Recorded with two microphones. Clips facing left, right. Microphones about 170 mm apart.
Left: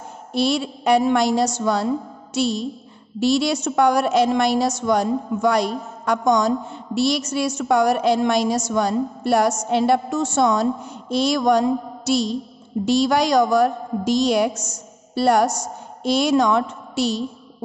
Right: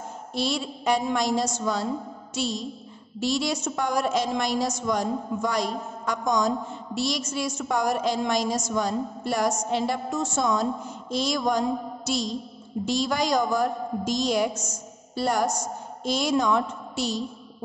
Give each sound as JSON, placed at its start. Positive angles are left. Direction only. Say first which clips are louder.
{"t": 0.3, "sound": "a woman's voice", "louder": "left 7 dB", "side_deg": 65}